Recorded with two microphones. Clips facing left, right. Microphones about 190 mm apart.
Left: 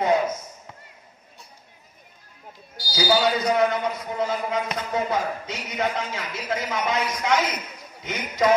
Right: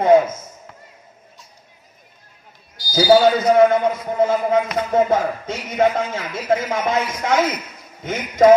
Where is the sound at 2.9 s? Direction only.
50° right (ahead or behind).